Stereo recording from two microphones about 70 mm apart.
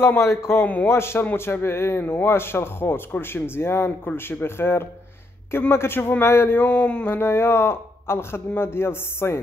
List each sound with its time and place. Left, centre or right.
0.2 s speech: left
7.1 s speech: left